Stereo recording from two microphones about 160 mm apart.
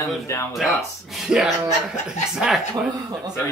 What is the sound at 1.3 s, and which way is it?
Speech, 5° right (ahead or behind).